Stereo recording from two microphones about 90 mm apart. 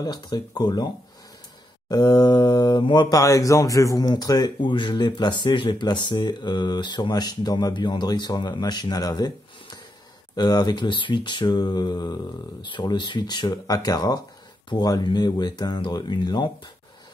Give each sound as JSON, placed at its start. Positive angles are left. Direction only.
{"t": 0.0, "sound": "speech", "side_deg": 50}
{"t": 1.9, "sound": "speech", "side_deg": 50}
{"t": 12.6, "sound": "speech", "side_deg": 60}